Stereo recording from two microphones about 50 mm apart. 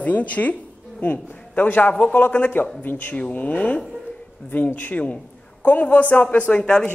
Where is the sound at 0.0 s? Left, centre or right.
Left.